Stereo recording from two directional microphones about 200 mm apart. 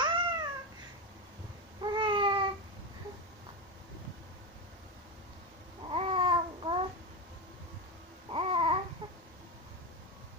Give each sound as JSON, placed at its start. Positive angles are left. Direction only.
{"t": 0.0, "sound": "babbling", "side_deg": -20}
{"t": 1.8, "sound": "a sound", "side_deg": -25}
{"t": 5.9, "sound": "babbling", "side_deg": -30}
{"t": 8.3, "sound": "babbling", "side_deg": -30}